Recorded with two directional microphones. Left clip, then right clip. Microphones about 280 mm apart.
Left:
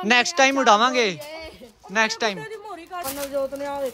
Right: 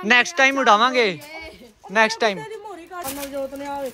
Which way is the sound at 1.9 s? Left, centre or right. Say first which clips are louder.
Right 4 dB; centre.